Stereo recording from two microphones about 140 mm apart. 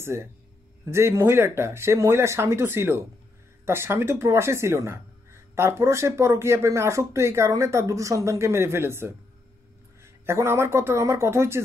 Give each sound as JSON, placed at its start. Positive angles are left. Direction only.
{"t": 0.0, "sound": "speech", "side_deg": -20}